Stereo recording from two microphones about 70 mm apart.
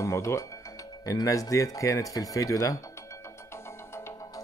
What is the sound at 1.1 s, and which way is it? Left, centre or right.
Speech, left.